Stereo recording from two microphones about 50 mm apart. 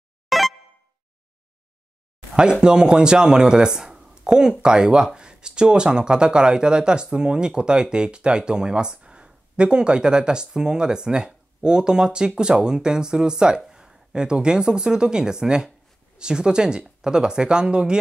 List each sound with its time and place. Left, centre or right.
0.3 s music: centre
2.6 s speech: centre